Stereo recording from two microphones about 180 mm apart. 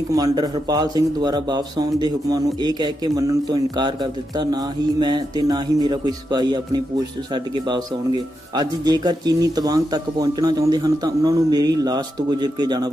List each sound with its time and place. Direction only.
0.1 s a man's voice: 20° right (ahead or behind)
8.5 s a man's voice: 25° right (ahead or behind)